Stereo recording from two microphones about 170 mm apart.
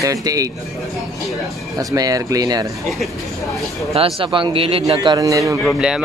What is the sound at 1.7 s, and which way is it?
Speech, 20° right (ahead or behind).